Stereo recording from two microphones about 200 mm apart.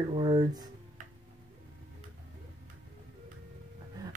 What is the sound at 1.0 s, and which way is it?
Tick-tock, 40° right (ahead or behind).